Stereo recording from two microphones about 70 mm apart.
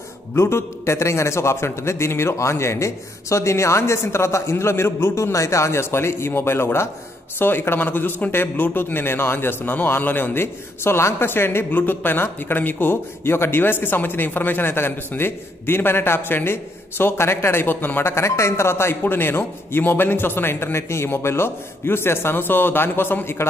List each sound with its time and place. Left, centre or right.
0.3 s speech: left